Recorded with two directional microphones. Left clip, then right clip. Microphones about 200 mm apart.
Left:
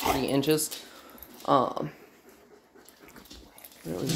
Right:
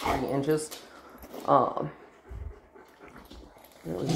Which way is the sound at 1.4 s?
20° left (ahead or behind).